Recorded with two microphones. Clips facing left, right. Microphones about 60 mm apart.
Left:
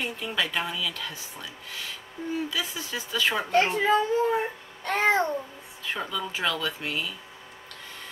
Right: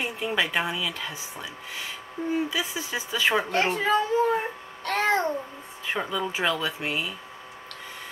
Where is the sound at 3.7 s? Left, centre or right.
Centre.